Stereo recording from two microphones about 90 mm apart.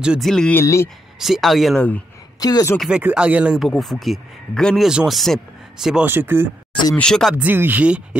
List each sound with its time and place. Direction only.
0.2 s speech: 5° left (ahead or behind)
0.6 s speech: 30° left (ahead or behind)
1.2 s speech: centre (ahead or behind)
2.4 s speech: 45° left (ahead or behind)
2.9 s speech: 15° right (ahead or behind)
3.5 s speech: centre (ahead or behind)
6.0 s speech: 25° right (ahead or behind)
7.0 s speech: 5° left (ahead or behind)
7.4 s speech: 20° right (ahead or behind)